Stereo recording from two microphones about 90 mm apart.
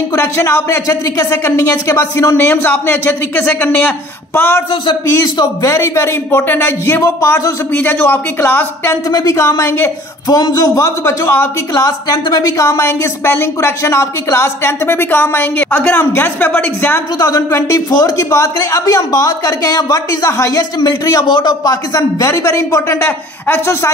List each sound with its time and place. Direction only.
0.1 s a woman's voice: 30° left (ahead or behind)
5.1 s a woman's voice: 40° left (ahead or behind); by 8.9 s 25° left (ahead or behind)
9.1 s a man's voice: 40° left (ahead or behind)
10.2 s a man's voice: 45° left (ahead or behind); by 11.4 s 30° left (ahead or behind)
11.7 s a woman's voice: 40° left (ahead or behind)
12.5 s a woman's voice: 35° left (ahead or behind)
17.2 s a man's voice: 35° left (ahead or behind)
21.3 s speech: 60° left (ahead or behind)
21.9 s a man's voice: 35° left (ahead or behind)